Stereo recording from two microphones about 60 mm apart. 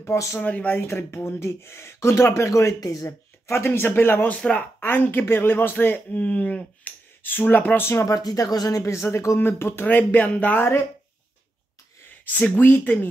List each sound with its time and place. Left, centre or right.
0.0 s speech: left
0.4 s speech: left
0.8 s speech: left
3.1 s speech: left
4.4 s speech: centre
4.7 s speech: left
7.7 s speech: left
8.0 s speech: left
9.4 s speech: left
9.8 s speech: left
12.4 s speech: left